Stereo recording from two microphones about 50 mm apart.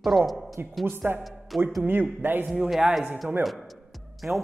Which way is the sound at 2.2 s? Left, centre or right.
Right.